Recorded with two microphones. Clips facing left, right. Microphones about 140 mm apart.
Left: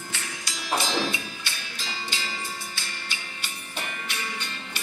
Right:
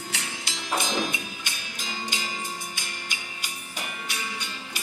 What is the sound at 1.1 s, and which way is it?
Music, 15° right (ahead or behind).